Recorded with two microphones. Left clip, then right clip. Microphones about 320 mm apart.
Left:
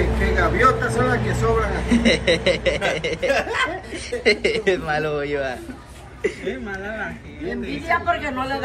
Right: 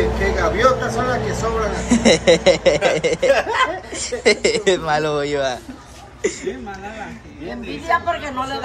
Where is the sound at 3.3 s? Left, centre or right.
Right.